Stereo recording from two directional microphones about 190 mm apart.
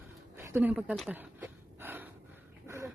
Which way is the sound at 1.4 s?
10° right (ahead or behind).